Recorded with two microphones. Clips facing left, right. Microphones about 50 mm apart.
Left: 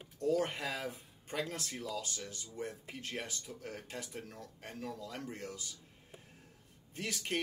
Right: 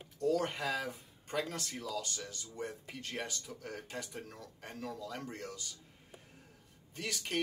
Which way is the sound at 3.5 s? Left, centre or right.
Centre.